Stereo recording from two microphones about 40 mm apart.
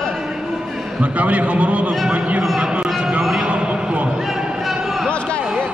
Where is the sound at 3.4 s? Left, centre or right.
Right.